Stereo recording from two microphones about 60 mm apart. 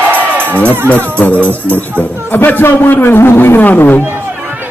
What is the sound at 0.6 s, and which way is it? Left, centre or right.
Speech, left.